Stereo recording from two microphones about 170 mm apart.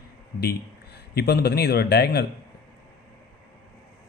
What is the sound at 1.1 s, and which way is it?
Speech, 70° left (ahead or behind).